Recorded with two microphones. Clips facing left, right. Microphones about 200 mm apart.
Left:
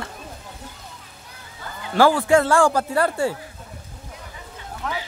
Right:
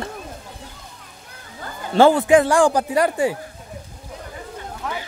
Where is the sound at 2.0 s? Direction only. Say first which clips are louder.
Right 3 dB; 20° right (ahead or behind).